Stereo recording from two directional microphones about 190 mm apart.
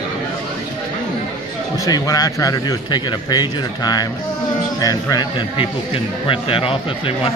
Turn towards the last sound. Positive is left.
turn(degrees=30)  # may be behind; listen again after turning